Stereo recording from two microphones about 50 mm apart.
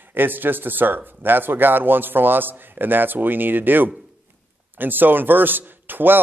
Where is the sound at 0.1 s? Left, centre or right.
Right.